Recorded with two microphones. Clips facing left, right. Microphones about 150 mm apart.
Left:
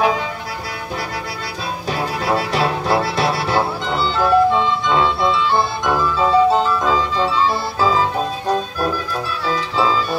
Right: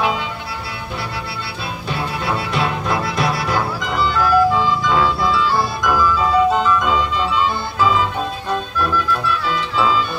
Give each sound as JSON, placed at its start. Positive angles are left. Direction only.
{"t": 1.9, "sound": "music", "side_deg": 40}